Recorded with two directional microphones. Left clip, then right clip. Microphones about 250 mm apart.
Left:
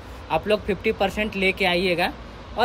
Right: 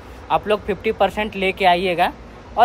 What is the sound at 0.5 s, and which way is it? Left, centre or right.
Speech, right.